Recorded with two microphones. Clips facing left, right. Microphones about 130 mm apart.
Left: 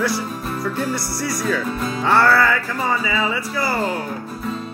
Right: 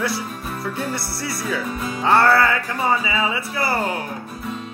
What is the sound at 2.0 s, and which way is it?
Music, 20° right (ahead or behind).